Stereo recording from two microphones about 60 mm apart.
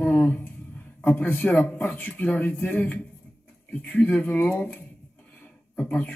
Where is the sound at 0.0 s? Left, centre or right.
Left.